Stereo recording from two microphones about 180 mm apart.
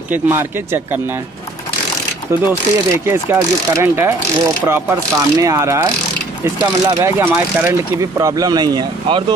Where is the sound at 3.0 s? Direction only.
15° right (ahead or behind).